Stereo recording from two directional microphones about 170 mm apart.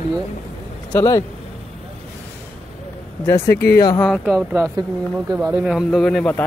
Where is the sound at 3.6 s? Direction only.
65° left (ahead or behind).